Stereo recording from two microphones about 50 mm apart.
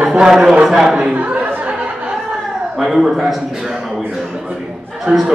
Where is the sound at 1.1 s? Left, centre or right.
Right.